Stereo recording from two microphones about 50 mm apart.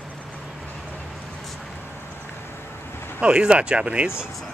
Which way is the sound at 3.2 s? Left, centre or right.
Right.